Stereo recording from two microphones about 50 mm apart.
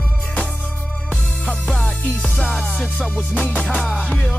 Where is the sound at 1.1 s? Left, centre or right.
Left.